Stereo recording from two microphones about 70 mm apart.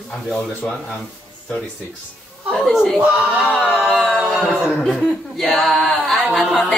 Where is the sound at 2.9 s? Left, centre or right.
Centre.